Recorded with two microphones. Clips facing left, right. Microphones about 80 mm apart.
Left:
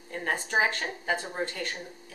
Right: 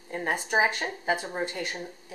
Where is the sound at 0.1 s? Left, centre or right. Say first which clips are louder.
Right 2 dB; centre.